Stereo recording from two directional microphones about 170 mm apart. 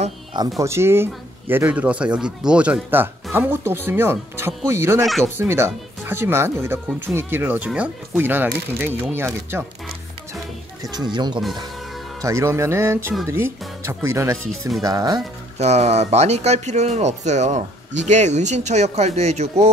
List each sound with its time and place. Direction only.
0.6 s speech: 15° right (ahead or behind)
10.8 s speech: 25° right (ahead or behind)
15.6 s speech: 40° right (ahead or behind)